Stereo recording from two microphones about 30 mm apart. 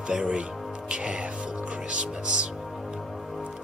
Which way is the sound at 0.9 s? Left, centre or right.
Right.